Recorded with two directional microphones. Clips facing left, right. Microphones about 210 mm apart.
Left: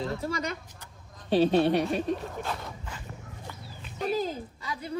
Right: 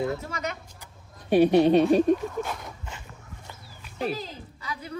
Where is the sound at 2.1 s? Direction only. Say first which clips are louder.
Right 8 dB; 50° right (ahead or behind).